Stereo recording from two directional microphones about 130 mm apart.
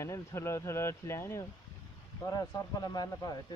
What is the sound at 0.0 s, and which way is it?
Speech, 20° left (ahead or behind).